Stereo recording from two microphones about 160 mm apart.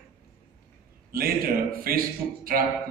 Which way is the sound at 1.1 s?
65° right (ahead or behind).